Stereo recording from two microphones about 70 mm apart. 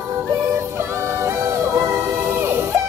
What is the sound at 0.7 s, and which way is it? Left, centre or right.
Music, right.